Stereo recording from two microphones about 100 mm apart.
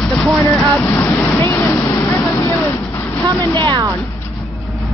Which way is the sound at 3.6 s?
50° right (ahead or behind).